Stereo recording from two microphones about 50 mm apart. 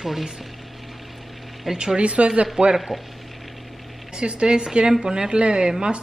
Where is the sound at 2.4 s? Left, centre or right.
Centre.